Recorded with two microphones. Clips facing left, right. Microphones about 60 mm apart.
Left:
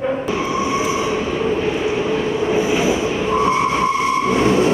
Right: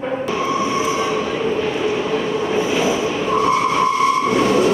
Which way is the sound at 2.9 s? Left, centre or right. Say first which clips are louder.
Even; centre.